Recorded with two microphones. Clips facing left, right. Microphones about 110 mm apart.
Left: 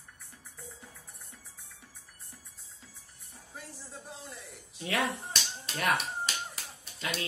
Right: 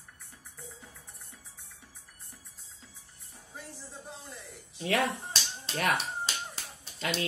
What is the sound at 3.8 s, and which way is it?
Speech, centre (ahead or behind).